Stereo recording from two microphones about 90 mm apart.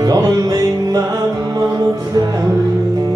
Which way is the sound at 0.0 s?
45° right (ahead or behind).